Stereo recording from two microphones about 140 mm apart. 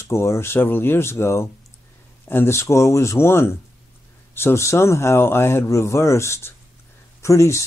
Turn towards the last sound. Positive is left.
turn(degrees=20)  # may be behind; listen again after turning